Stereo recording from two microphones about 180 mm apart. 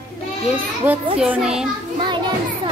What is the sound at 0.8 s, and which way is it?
Speech, 10° right (ahead or behind).